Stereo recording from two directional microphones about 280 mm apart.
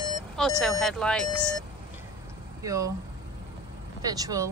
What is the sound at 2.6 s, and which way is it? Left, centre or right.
Speech, centre.